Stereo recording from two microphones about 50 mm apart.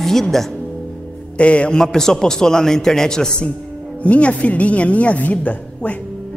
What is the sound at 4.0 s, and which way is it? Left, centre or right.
A woman's voice, left.